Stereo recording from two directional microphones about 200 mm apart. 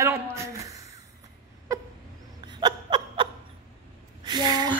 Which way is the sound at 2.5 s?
20° right (ahead or behind).